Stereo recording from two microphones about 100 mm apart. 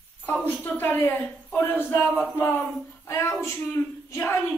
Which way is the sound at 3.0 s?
25° left (ahead or behind).